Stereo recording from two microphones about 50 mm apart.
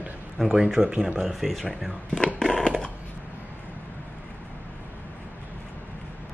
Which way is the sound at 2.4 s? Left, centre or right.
Centre.